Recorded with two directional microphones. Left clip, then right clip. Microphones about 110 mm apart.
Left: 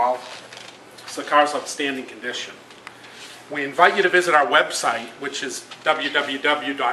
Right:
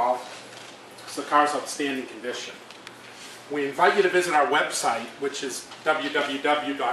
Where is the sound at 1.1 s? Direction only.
15° left (ahead or behind).